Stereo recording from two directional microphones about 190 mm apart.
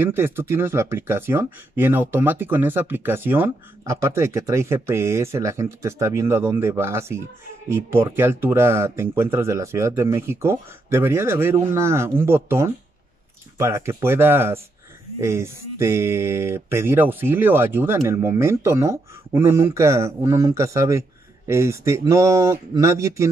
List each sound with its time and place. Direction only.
0.0 s speech: 10° right (ahead or behind)